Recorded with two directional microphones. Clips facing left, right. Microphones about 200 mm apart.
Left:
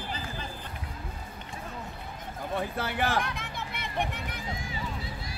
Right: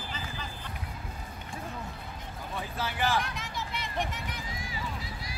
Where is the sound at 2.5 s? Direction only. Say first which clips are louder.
Left 4 dB; 60° left (ahead or behind).